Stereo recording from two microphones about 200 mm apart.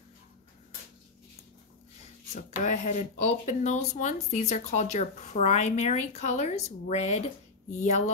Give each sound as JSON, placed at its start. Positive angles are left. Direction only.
{"t": 2.3, "sound": "speech", "side_deg": 35}